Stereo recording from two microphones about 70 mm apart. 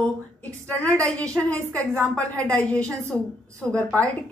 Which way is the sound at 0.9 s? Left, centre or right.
Centre.